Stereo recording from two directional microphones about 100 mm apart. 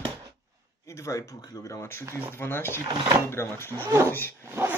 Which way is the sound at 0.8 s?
30° left (ahead or behind).